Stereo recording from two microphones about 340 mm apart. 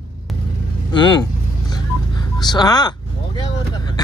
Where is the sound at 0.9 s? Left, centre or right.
Centre.